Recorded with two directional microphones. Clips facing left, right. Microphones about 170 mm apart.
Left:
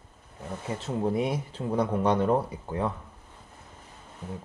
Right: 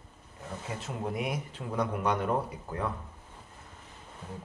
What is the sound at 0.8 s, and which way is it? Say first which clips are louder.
Speech: left 8 dB; 30° left (ahead or behind).